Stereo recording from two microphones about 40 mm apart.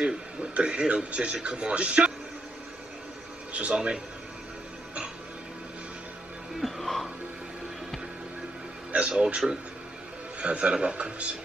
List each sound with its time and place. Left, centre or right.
0.0 s speech: right
3.5 s a man's voice: right
6.6 s music: centre
8.9 s a man's voice: right
10.4 s a man's voice: right